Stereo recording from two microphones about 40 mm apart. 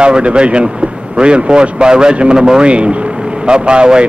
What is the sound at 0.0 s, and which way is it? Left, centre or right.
A man's voice, right.